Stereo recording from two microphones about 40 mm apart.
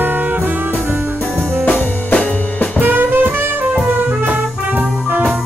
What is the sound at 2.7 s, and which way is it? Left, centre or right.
Music, right.